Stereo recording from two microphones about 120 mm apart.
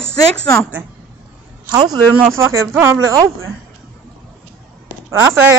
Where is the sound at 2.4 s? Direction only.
20° right (ahead or behind).